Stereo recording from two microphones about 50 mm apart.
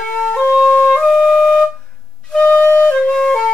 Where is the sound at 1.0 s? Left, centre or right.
Centre.